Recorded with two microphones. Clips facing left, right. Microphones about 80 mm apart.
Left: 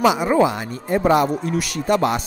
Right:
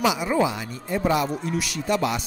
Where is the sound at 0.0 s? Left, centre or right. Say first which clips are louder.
Left 6 dB; left.